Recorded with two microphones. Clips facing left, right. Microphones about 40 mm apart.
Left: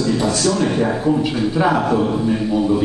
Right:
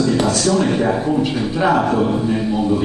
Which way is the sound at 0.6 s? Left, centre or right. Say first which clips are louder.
Even; centre.